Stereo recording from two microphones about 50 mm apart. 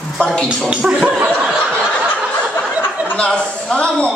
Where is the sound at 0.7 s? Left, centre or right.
Right.